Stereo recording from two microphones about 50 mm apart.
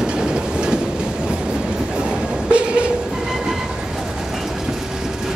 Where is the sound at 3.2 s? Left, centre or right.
Centre.